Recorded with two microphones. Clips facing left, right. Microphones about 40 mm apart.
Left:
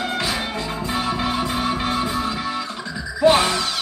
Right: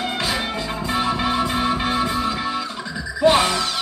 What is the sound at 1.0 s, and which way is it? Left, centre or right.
Music, right.